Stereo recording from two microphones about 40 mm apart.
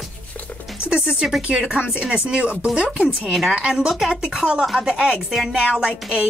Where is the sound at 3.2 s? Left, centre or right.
Centre.